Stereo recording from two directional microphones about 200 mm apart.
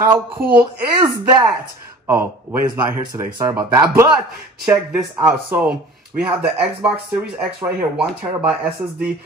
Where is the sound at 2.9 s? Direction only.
10° right (ahead or behind).